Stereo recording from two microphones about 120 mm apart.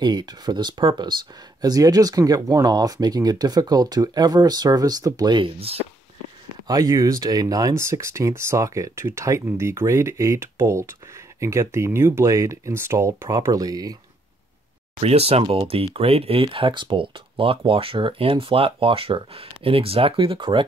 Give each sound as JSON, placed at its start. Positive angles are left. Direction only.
{"t": 0.0, "sound": "speech", "side_deg": -35}
{"t": 5.6, "sound": "speech", "side_deg": -55}
{"t": 6.7, "sound": "speech", "side_deg": -30}
{"t": 15.0, "sound": "speech", "side_deg": -55}